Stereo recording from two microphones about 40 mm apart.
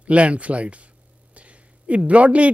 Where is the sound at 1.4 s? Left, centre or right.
Right.